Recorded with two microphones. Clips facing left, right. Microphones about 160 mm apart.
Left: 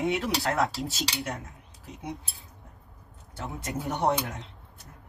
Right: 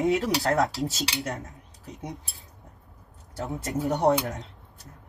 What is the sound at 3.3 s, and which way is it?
Speech, 40° right (ahead or behind).